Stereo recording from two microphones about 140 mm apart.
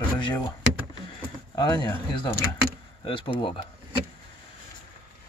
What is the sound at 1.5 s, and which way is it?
Speech, 30° left (ahead or behind).